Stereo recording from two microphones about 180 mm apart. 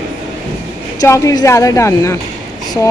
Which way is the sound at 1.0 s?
15° left (ahead or behind).